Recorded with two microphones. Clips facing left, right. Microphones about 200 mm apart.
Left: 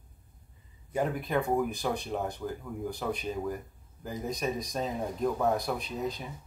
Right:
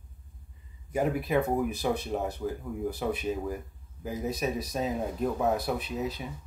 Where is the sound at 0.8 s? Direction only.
10° right (ahead or behind).